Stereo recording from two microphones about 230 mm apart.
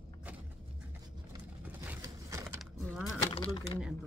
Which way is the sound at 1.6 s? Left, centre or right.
Centre.